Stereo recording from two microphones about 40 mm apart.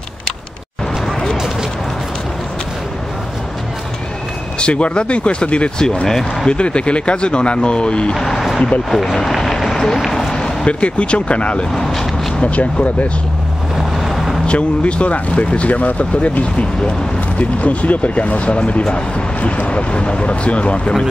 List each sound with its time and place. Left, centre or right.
4.6 s speech: left
6.0 s speech: centre
6.5 s speech: left
8.1 s speech: centre
10.6 s speech: left
11.7 s speech: centre
12.4 s speech: left
13.9 s a sound: centre
14.4 s speech: left